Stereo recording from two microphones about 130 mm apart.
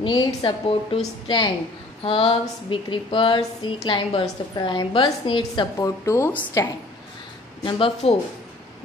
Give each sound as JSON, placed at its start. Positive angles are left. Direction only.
{"t": 0.0, "sound": "a woman's voice", "side_deg": 40}
{"t": 7.6, "sound": "a woman's voice", "side_deg": 40}